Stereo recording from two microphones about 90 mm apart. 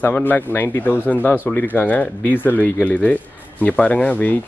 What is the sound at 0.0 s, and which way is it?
Speech, 20° left (ahead or behind).